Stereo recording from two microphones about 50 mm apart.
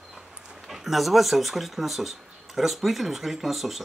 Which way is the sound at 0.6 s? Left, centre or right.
Centre.